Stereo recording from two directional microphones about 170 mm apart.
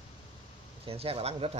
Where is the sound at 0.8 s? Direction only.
35° right (ahead or behind).